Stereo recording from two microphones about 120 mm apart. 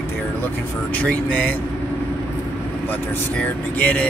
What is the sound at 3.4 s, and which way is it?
Music, 10° left (ahead or behind).